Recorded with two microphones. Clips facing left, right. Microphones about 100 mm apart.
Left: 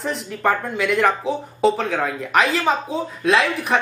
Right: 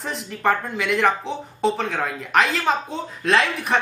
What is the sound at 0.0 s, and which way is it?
Speech, centre (ahead or behind).